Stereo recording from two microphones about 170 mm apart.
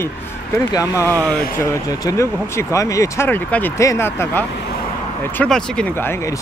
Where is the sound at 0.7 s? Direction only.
20° left (ahead or behind).